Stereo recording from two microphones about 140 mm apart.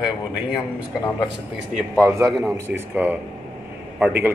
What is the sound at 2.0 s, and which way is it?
Speech, 20° right (ahead or behind).